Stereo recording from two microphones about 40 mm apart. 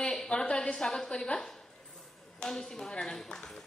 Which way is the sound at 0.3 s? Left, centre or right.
Left.